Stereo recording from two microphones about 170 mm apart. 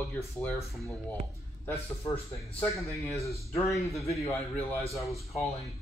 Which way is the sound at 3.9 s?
Centre (ahead or behind).